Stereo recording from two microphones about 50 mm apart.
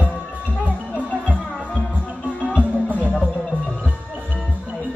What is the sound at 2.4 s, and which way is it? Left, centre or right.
Music, right.